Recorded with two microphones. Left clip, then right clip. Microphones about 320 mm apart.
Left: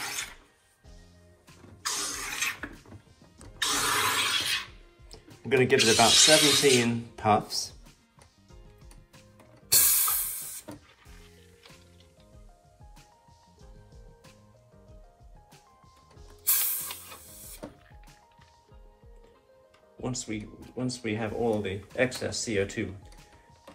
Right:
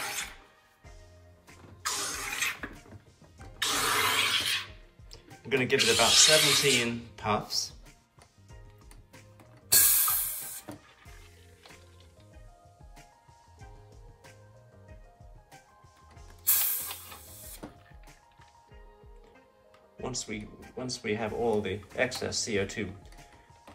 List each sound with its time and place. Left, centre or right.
0.0 s music: centre
1.9 s a sound: centre
5.1 s speech: centre
9.8 s music: centre
16.6 s printer: centre
20.0 s music: centre
20.7 s speech: centre